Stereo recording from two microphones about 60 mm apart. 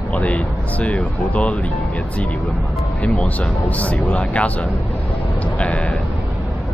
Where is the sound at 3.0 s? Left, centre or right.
Centre.